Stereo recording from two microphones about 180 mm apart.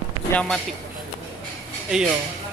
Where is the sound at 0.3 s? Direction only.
5° left (ahead or behind).